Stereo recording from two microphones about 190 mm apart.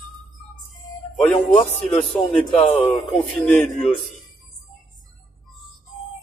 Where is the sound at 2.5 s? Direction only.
30° left (ahead or behind).